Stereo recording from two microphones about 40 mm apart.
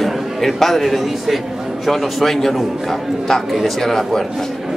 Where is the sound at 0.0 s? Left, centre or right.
Centre.